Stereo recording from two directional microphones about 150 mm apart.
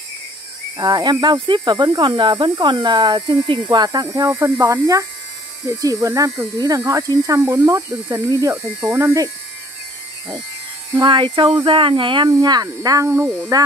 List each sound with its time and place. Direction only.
0.7 s speech: 25° right (ahead or behind)
11.0 s speech: 35° right (ahead or behind); by 13.5 s 15° right (ahead or behind)